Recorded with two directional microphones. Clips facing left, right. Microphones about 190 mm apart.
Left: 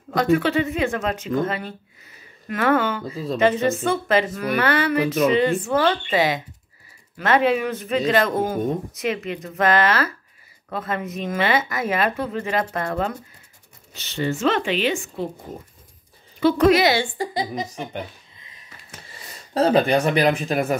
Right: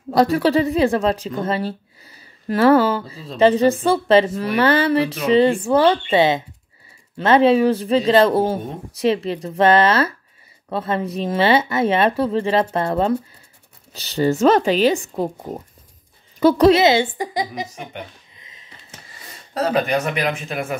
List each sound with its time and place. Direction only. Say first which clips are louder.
0.1 s a woman's voice: right 3 dB; 35° right (ahead or behind)
16.3 s a woman's voice: right 3 dB; 40° right (ahead or behind); by 17.6 s 15° right (ahead or behind)
18.4 s a sound: right 1 dB; 20° right (ahead or behind)
19.5 s speech: left 2 dB; 30° left (ahead or behind)